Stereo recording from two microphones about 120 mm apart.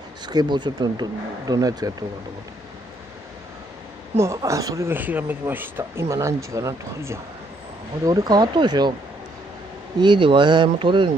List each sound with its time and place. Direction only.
0.3 s speech: 35° right (ahead or behind)
4.2 s speech: 25° right (ahead or behind)
9.9 s speech: 40° right (ahead or behind)